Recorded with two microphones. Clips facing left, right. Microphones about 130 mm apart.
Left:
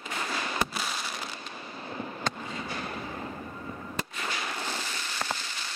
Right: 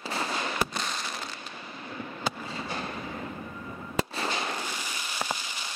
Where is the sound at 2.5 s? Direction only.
30° right (ahead or behind).